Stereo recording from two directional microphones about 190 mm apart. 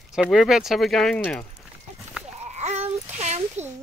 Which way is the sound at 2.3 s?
35° right (ahead or behind).